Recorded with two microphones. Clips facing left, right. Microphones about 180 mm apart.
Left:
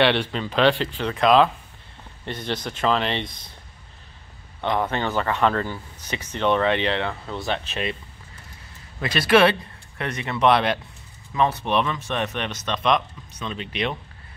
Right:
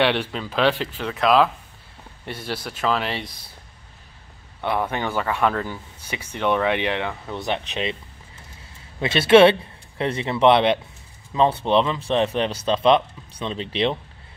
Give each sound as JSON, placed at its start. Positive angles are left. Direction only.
{"t": 0.0, "sound": "speech", "side_deg": -10}
{"t": 4.6, "sound": "speech", "side_deg": -10}
{"t": 9.0, "sound": "speech", "side_deg": -25}